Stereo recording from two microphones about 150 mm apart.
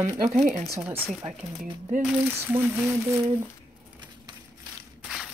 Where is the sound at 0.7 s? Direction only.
15° right (ahead or behind).